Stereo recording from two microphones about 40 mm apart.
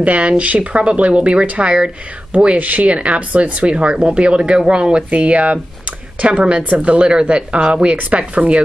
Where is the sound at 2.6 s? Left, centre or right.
Right.